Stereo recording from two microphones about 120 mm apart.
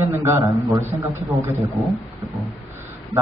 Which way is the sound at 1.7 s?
Centre (ahead or behind).